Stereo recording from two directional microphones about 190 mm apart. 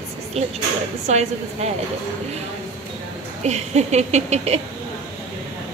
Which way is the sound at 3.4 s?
35° right (ahead or behind).